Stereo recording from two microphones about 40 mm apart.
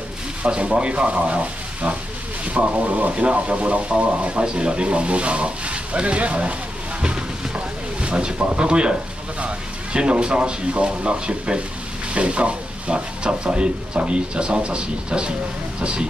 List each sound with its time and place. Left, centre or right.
0.5 s speech: right
4.4 s speech: right
7.0 s a sound: right
9.9 s speech: right